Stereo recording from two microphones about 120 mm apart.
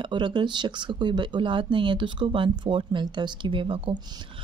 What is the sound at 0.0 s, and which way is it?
Speech, 40° right (ahead or behind).